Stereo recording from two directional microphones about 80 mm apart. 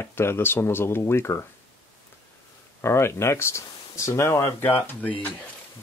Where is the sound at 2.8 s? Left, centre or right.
Left.